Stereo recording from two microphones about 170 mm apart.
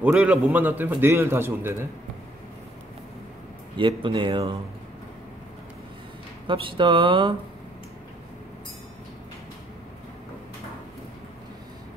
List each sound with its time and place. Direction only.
0.0 s a man's voice: 5° right (ahead or behind)
3.7 s speech: 30° right (ahead or behind)
6.4 s speech: 30° right (ahead or behind)